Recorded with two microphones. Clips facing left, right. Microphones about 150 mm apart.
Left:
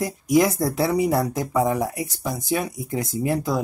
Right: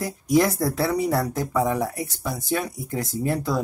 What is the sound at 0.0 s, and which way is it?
Speech, 15° left (ahead or behind).